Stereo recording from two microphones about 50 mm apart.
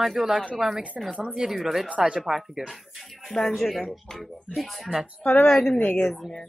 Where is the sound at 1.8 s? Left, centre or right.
Right.